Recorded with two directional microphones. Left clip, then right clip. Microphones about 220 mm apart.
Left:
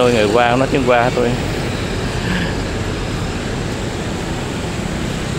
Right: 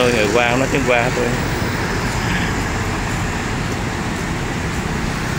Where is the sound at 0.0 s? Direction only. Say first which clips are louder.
Left 2 dB; 15° left (ahead or behind).